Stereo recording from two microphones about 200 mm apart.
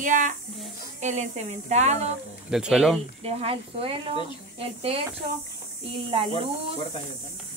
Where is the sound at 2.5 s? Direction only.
5° right (ahead or behind).